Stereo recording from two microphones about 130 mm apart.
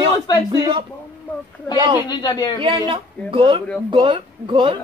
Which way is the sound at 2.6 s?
40° right (ahead or behind).